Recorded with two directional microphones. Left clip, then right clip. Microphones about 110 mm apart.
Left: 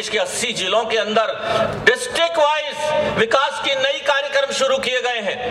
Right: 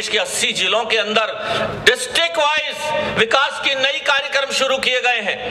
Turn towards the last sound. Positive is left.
turn(degrees=-20)  # may be behind; listen again after turning